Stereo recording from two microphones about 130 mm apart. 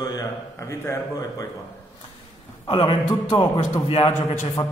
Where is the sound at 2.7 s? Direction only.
40° left (ahead or behind).